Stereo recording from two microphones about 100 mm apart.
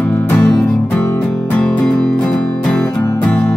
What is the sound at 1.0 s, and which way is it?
Music, 25° left (ahead or behind).